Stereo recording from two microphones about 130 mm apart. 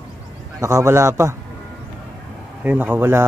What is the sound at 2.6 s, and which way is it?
Speech, 15° right (ahead or behind).